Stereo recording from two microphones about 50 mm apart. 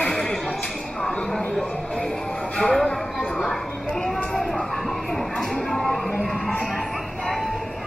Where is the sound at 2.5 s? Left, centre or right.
Centre.